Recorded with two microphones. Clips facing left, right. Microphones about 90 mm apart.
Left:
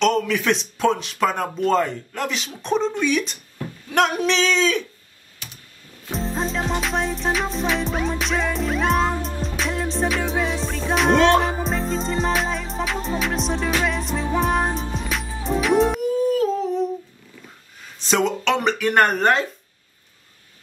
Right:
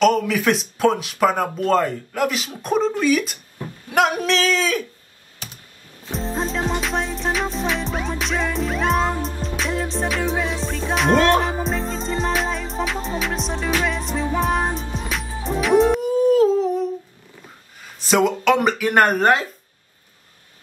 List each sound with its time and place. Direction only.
0.0 s music: 5° right (ahead or behind)
6.1 s music: centre (ahead or behind)
17.9 s music: 5° right (ahead or behind)